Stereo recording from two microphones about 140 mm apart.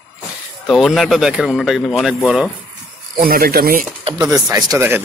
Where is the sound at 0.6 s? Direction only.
Centre (ahead or behind).